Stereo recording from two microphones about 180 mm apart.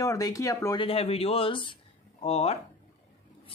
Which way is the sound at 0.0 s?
20° left (ahead or behind).